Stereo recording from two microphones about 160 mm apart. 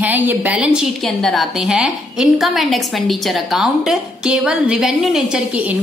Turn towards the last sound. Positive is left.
turn(degrees=-5)  # may be behind; listen again after turning